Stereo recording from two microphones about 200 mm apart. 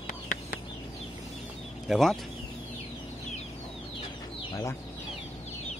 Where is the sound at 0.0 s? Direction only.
45° left (ahead or behind).